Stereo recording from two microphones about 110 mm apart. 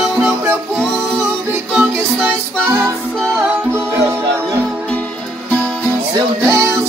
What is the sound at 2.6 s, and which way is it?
Music, 20° right (ahead or behind).